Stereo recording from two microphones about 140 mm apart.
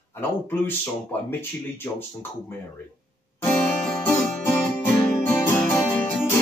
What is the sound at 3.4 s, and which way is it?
Music, 10° left (ahead or behind).